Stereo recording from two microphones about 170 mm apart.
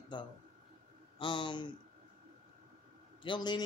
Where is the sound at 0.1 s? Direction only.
30° left (ahead or behind).